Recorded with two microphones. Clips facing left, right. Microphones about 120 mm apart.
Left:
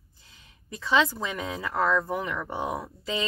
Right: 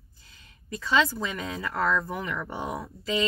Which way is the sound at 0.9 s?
20° left (ahead or behind).